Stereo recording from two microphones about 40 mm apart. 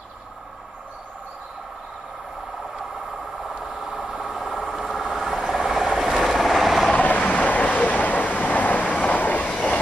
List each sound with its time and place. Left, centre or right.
3.4 s vehicle: centre
7.2 s vehicle: left